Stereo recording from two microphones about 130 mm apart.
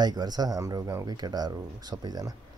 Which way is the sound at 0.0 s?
30° right (ahead or behind).